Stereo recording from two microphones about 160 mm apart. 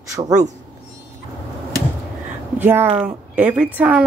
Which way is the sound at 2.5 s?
15° right (ahead or behind).